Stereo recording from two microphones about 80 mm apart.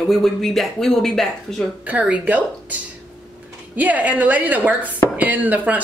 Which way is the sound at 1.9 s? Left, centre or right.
Centre.